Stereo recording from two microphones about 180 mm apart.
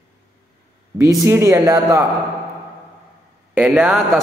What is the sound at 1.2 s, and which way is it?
Speech, 15° right (ahead or behind).